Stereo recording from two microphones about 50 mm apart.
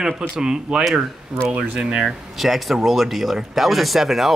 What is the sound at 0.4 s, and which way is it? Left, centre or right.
Speech, centre.